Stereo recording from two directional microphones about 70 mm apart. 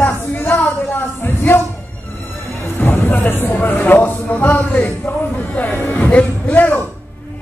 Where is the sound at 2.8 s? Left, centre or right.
Left.